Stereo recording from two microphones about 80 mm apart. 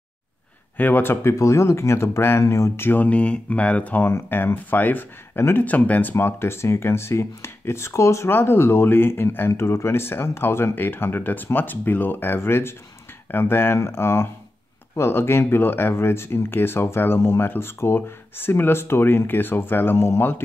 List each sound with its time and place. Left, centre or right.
0.7 s speech: left